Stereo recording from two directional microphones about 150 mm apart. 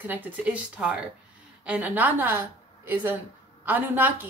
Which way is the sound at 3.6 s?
10° right (ahead or behind).